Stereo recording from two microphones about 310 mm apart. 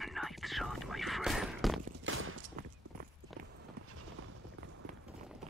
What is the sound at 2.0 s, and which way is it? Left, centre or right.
Mechanisms, right.